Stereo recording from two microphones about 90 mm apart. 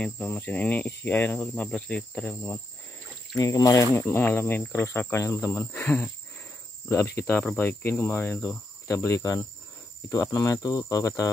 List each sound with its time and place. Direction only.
0.0 s cricket: 15° left (ahead or behind)
1.5 s cricket: 10° left (ahead or behind)
3.3 s cricket: 40° left (ahead or behind)
4.0 s cricket: 25° left (ahead or behind); by 11.2 s 40° left (ahead or behind)